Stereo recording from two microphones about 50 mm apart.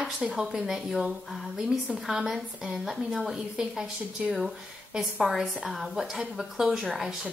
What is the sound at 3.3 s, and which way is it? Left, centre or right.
A woman's voice, centre.